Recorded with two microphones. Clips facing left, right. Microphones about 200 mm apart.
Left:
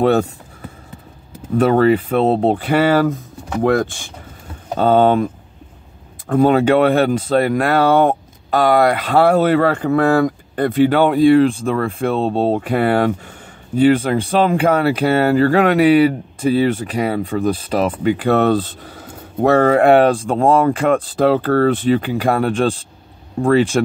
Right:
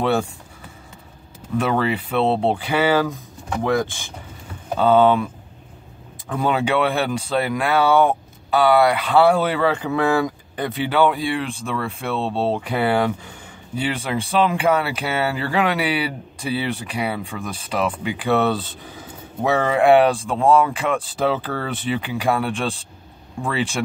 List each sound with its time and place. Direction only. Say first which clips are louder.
0.0 s speech: left 6 dB; 45° left (ahead or behind)
1.6 s speech: left 9 dB; 45° left (ahead or behind)
4.7 s speech: left 2 dB; 45° left (ahead or behind)